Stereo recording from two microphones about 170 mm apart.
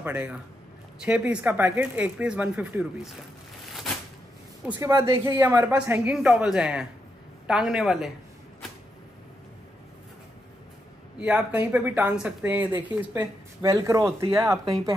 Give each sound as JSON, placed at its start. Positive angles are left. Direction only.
{"t": 0.0, "sound": "speech", "side_deg": -10}
{"t": 4.7, "sound": "speech", "side_deg": -20}
{"t": 5.4, "sound": "speech", "side_deg": -10}
{"t": 11.1, "sound": "speech", "side_deg": -10}